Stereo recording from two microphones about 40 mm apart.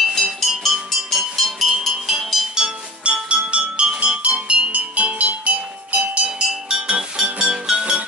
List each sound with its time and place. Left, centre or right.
0.4 s music: centre; by 5.9 s right
6.7 s music: right